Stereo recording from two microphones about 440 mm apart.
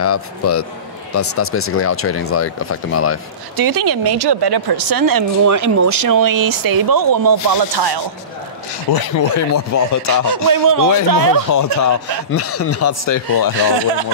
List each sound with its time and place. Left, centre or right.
0.0 s speech: left
3.5 s speech: right
8.9 s speech: left
10.2 s speech: right
11.5 s speech: left
13.0 s speech: left